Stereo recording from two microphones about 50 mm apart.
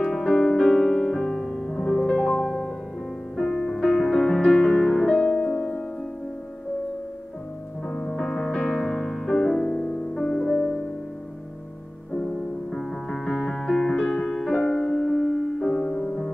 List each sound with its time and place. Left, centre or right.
0.0 s music: centre
7.9 s music: centre
12.7 s music: centre
14.6 s music: left
15.0 s music: centre